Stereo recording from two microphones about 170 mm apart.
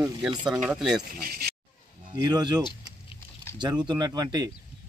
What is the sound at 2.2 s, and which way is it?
Speech, 25° right (ahead or behind).